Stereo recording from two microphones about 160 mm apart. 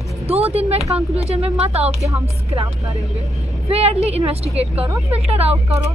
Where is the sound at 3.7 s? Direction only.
40° right (ahead or behind).